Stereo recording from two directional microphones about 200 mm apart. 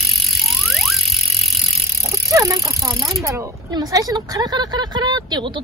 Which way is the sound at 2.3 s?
15° right (ahead or behind).